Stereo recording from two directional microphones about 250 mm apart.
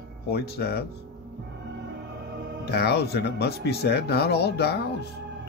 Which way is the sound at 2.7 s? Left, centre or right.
Left.